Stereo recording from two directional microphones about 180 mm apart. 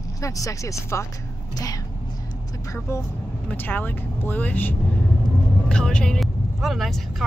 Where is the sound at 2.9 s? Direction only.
15° left (ahead or behind).